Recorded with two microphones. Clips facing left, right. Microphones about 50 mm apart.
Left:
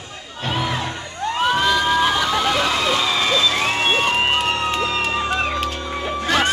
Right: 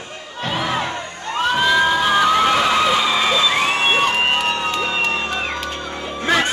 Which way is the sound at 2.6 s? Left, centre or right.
Centre.